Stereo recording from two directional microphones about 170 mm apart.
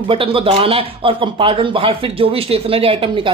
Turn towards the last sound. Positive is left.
turn(degrees=-35)  # may be behind; listen again after turning